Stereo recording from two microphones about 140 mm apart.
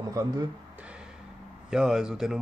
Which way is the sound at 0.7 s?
10° right (ahead or behind).